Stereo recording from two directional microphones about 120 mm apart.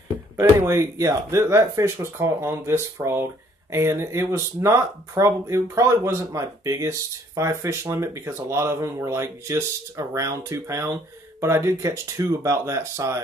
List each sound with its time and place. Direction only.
0.4 s speech: 25° right (ahead or behind)